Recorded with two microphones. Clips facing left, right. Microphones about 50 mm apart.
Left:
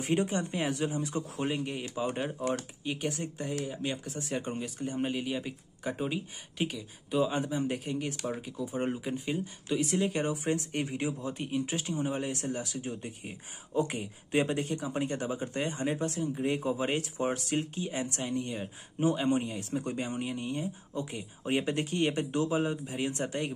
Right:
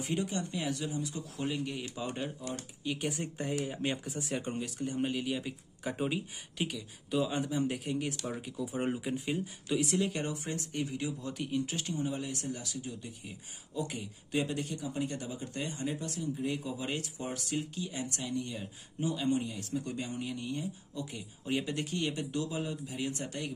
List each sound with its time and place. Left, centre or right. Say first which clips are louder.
0.0 s speech: left 5 dB; left
1.6 s speech: left 3 dB; centre
3.0 s speech: left 2 dB; centre
3.3 s speech: even; centre
4.1 s speech: left 1 dB; centre
10.7 s speech: left 3 dB; left
11.2 s speech: left 2 dB; centre
12.0 s speech: left 3 dB; left